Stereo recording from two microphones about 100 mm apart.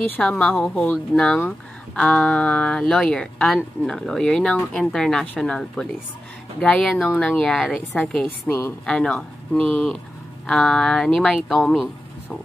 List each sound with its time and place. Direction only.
0.2 s speech: 10° left (ahead or behind)
6.9 s speech: centre (ahead or behind)
8.5 s speech: 25° left (ahead or behind)
8.8 s speech: 5° left (ahead or behind)